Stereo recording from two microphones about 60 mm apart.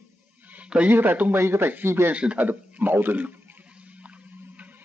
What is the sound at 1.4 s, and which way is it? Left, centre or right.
Speech, right.